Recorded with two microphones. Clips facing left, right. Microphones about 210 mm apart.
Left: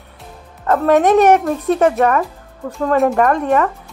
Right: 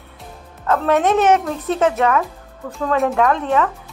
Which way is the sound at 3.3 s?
10° left (ahead or behind).